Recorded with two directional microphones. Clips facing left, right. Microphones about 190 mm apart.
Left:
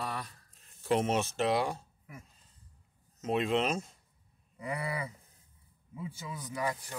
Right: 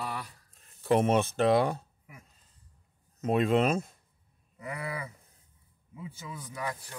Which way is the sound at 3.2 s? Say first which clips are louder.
Right 4 dB; 55° right (ahead or behind).